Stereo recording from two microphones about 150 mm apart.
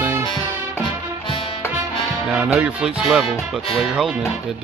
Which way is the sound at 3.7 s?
5° right (ahead or behind).